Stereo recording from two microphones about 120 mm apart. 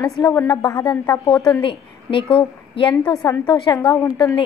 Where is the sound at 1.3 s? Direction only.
5° left (ahead or behind).